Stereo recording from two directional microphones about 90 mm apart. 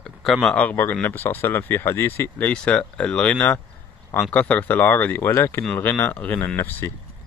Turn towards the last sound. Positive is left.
turn(degrees=25)  # may be behind; listen again after turning